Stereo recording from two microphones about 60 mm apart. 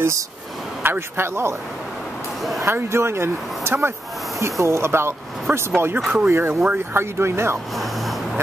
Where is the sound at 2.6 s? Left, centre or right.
Right.